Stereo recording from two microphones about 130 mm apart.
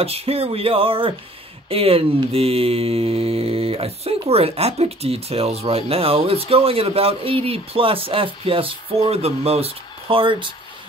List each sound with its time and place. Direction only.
0.0 s speech: 50° right (ahead or behind)